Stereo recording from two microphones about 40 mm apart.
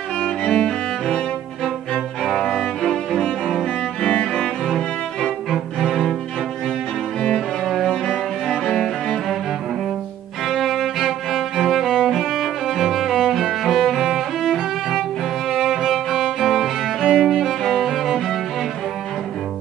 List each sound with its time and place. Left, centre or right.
0.2 s music: centre
0.7 s cello: centre
3.6 s music: centre
5.2 s cello: centre
7.3 s cello: centre
7.9 s cello: centre
10.5 s music: centre